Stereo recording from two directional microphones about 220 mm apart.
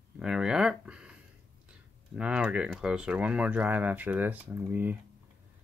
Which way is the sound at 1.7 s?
5° right (ahead or behind).